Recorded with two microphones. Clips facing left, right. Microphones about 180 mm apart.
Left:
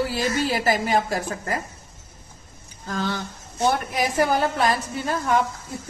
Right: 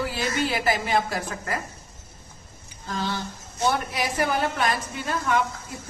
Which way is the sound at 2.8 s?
50° left (ahead or behind).